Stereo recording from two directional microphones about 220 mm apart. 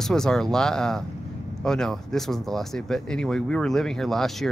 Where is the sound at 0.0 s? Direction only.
Centre (ahead or behind).